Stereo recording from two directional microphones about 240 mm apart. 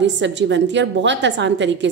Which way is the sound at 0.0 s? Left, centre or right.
Right.